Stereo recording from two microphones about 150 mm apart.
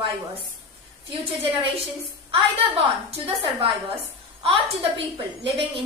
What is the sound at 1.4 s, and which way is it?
Speech, 40° right (ahead or behind).